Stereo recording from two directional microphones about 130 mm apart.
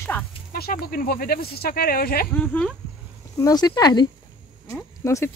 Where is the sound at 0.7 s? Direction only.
90° left.